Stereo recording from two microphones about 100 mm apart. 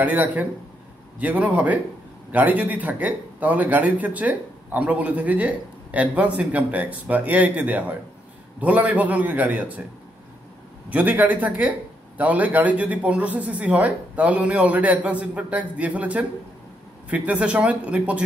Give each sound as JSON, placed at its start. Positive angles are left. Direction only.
{"t": 0.0, "sound": "a man's voice", "side_deg": -15}
{"t": 10.9, "sound": "a man's voice", "side_deg": -15}